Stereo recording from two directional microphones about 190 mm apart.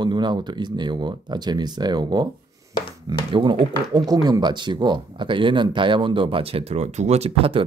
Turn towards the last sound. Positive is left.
turn(degrees=-30)  # may be behind; listen again after turning